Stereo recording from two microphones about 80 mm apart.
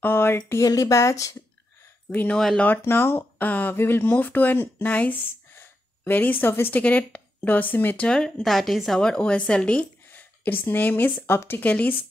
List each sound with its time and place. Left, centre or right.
0.0 s a woman's voice: left
0.7 s speech: left
2.0 s speech: left
2.3 s speech: centre
2.6 s a woman's voice: left
10.0 s speech: left